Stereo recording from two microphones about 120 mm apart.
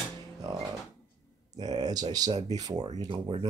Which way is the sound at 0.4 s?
35° right (ahead or behind).